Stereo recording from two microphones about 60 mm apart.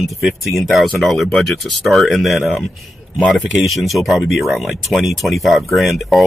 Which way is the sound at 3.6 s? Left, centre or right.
Centre.